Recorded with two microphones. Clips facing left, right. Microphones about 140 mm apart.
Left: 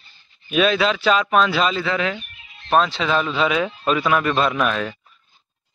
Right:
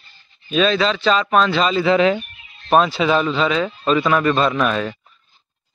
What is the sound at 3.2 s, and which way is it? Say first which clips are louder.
A man's voice: right 2 dB; 5° left (ahead or behind).